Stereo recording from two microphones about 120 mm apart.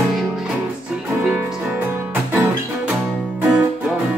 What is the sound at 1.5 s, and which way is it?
Music, 5° right (ahead or behind).